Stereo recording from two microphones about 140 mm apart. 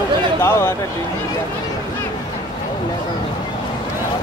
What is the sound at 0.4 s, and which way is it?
Speech, 20° left (ahead or behind).